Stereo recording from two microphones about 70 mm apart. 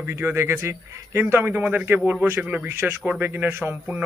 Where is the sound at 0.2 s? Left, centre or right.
Right.